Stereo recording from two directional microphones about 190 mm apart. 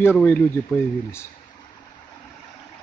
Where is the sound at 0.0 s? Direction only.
10° left (ahead or behind).